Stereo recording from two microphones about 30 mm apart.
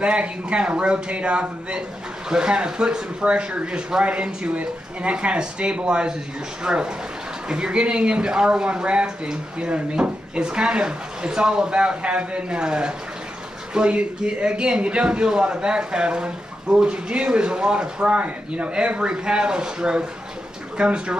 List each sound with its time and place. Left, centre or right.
0.0 s speech: right
2.2 s speech: right